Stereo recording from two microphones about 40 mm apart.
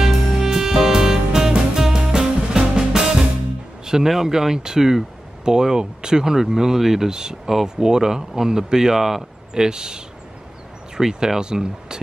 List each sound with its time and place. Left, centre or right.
0.0 s music: centre
3.8 s a sound: centre
4.1 s speech: centre
9.5 s speech: centre